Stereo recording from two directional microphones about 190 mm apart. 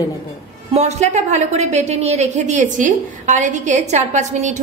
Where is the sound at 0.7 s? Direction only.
35° right (ahead or behind).